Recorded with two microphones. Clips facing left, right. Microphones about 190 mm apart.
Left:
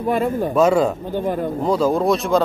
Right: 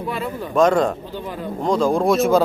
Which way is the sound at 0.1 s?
45° left (ahead or behind).